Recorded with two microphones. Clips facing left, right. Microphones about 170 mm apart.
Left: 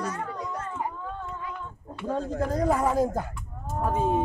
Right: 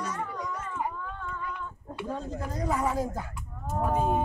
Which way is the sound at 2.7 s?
45° left (ahead or behind).